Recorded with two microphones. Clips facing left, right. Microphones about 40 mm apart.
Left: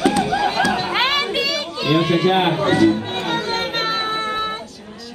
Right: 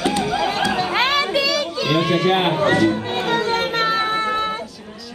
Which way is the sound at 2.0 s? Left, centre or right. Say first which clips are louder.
Left 1 dB; centre.